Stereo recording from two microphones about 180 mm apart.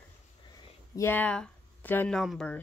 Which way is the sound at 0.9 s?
10° left (ahead or behind).